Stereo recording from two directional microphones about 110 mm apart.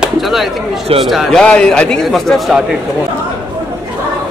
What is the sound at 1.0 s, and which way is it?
Speech, centre (ahead or behind).